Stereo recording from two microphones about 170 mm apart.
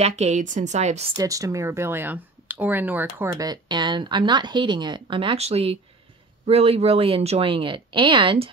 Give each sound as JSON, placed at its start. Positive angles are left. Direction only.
{"t": 0.0, "sound": "speech", "side_deg": -40}
{"t": 1.1, "sound": "speech", "side_deg": -20}